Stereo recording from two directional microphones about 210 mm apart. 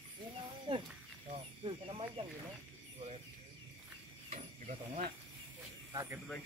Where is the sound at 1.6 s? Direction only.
25° right (ahead or behind).